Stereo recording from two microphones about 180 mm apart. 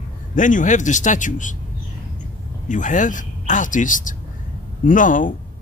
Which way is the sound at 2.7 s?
45° left (ahead or behind).